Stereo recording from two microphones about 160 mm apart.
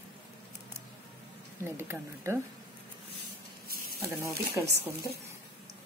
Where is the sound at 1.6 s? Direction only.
15° right (ahead or behind).